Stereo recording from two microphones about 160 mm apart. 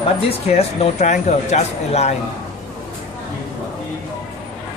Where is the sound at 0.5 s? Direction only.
40° left (ahead or behind).